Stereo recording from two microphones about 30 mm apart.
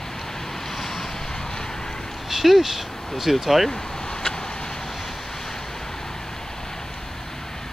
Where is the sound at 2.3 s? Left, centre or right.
Centre.